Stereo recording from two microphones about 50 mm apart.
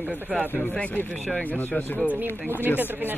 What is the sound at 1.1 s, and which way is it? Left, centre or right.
A woman's voice, left.